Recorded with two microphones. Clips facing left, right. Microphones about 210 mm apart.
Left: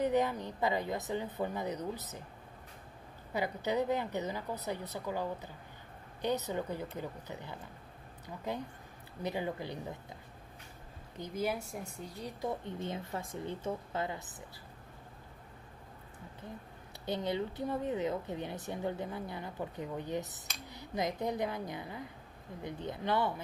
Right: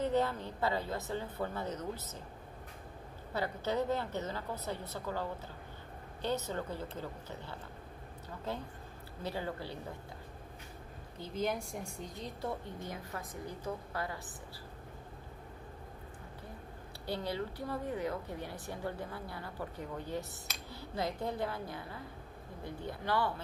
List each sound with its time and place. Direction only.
0.0 s speech: 15° left (ahead or behind)
3.3 s speech: 15° left (ahead or behind)
11.1 s a woman's voice: 10° left (ahead or behind)
17.0 s a woman's voice: 20° left (ahead or behind)